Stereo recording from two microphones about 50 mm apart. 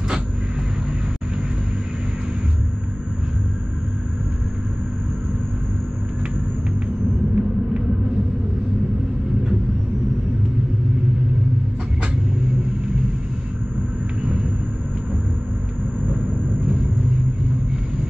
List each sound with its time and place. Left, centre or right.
7.4 s rumble: centre